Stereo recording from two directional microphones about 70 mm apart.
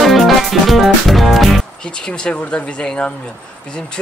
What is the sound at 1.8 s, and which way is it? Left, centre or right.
Speech, centre.